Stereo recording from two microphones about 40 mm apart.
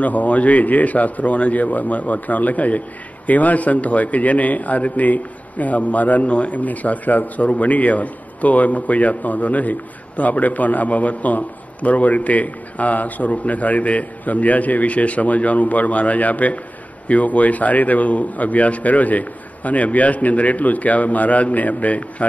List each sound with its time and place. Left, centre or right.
0.0 s a man's voice: left